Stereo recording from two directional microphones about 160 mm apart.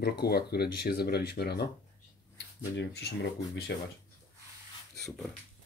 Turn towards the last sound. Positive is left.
turn(degrees=80)